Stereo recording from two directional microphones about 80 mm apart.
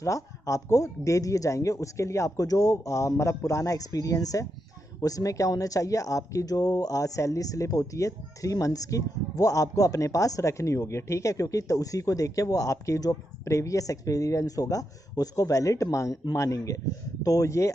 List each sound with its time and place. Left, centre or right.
0.0 s speech: left